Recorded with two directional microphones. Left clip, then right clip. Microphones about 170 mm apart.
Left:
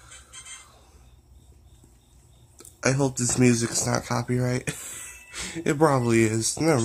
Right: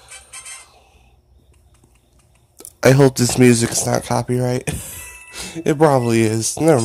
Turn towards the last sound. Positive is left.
turn(degrees=-30)  # may be behind; listen again after turning